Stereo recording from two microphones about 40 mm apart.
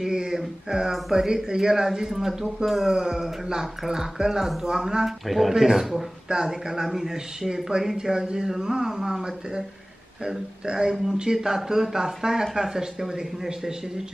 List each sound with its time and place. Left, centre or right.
0.0 s a sound: centre
1.1 s speech: centre
6.2 s speech: centre